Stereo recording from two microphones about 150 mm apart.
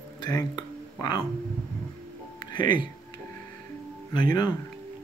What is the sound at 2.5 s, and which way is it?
Speech, 30° left (ahead or behind).